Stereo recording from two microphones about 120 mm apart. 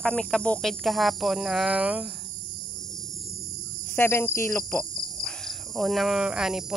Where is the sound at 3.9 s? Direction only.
20° left (ahead or behind).